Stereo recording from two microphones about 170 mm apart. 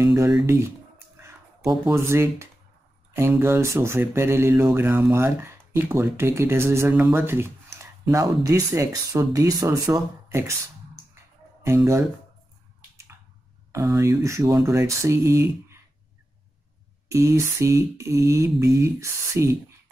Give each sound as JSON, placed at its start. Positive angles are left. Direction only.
{"t": 0.0, "sound": "speech", "side_deg": -15}
{"t": 1.9, "sound": "speech", "side_deg": -15}
{"t": 11.6, "sound": "speech", "side_deg": -15}
{"t": 13.7, "sound": "speech", "side_deg": -15}
{"t": 17.1, "sound": "speech", "side_deg": -15}